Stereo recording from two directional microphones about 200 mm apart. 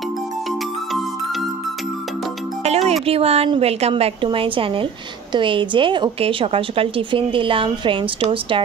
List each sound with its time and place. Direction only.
2.6 s a woman's voice: 30° right (ahead or behind)